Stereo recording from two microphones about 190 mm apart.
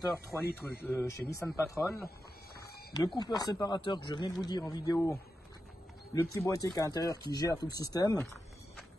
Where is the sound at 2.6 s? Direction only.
55° left (ahead or behind).